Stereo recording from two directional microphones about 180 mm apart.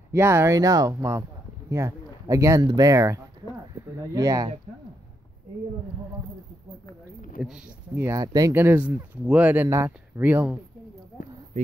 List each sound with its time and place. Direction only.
0.1 s speech: 15° right (ahead or behind)
7.4 s speech: 5° right (ahead or behind)
11.6 s speech: 40° right (ahead or behind)